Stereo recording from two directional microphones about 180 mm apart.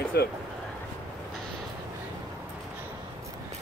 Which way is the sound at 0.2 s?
60° left (ahead or behind).